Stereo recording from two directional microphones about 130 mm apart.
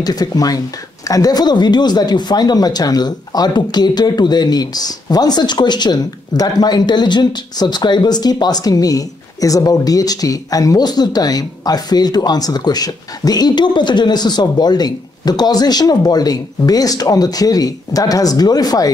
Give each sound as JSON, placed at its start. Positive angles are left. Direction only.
{"t": 0.0, "sound": "speech", "side_deg": 30}